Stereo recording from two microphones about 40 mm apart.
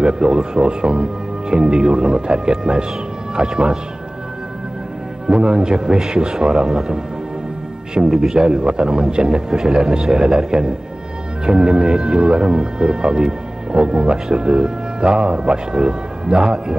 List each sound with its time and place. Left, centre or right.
0.0 s speech: right
5.3 s speech: right
8.1 s speech: centre